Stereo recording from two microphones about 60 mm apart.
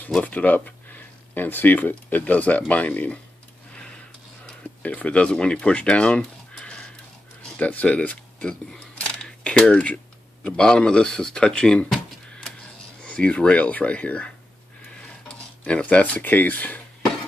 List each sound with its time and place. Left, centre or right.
0.2 s speech: left
4.8 s speech: left
7.4 s a sound: left
10.4 s speech: centre
13.0 s speech: left
15.0 s a sound: centre